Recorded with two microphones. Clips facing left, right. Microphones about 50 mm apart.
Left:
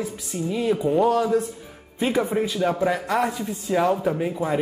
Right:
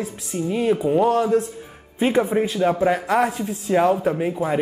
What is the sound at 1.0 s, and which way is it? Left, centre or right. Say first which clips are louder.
A man's voice: right 2 dB; right.